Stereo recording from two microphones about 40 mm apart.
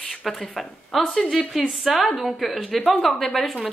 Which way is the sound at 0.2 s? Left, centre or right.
Centre.